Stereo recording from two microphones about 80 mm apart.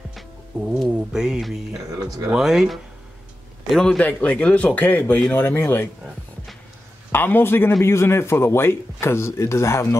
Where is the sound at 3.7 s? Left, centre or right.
Centre; by 5.9 s left.